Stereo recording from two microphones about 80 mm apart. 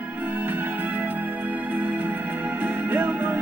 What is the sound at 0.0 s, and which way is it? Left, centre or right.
Music, right.